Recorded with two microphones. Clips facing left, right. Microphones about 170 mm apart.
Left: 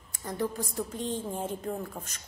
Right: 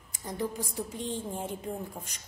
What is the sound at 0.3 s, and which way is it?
Speech, 15° right (ahead or behind).